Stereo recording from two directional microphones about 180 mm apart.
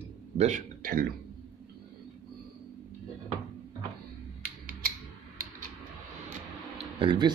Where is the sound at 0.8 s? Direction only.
55° right (ahead or behind).